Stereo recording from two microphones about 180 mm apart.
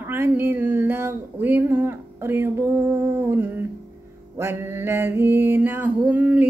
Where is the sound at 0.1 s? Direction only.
10° right (ahead or behind).